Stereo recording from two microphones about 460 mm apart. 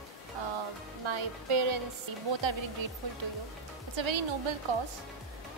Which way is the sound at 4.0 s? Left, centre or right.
Right.